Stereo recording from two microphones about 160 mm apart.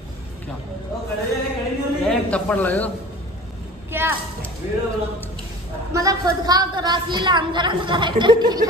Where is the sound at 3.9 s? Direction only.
15° right (ahead or behind).